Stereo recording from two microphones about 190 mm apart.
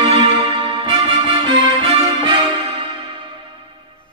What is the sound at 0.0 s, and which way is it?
Music, 25° right (ahead or behind).